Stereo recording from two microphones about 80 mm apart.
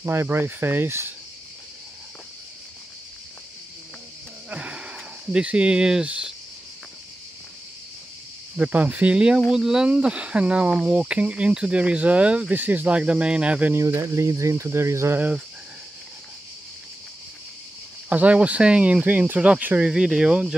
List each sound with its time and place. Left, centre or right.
0.0 s speech: right
4.5 s a sound: centre
8.5 s speech: centre
13.7 s speech: right
18.1 s speech: centre